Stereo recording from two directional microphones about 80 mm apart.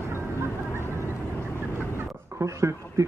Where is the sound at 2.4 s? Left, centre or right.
Right.